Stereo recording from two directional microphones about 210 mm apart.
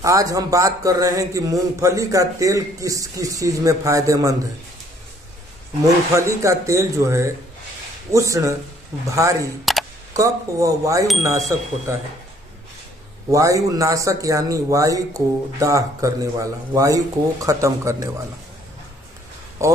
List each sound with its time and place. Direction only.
0.0 s a man's voice: 15° right (ahead or behind)
6.1 s a man's voice: 15° right (ahead or behind)
13.3 s a man's voice: 15° right (ahead or behind)
19.6 s speech: 15° right (ahead or behind)